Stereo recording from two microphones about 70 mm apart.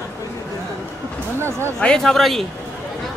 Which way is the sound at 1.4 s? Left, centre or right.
Right.